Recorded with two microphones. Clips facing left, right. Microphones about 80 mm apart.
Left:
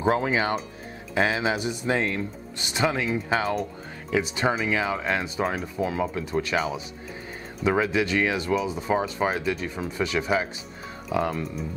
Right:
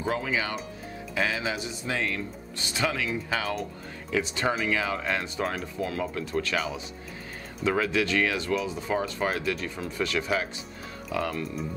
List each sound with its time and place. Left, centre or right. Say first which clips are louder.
0.0 s speech: left 6 dB; left
4.1 s speech: left 3 dB; centre
7.6 s speech: left 3 dB; centre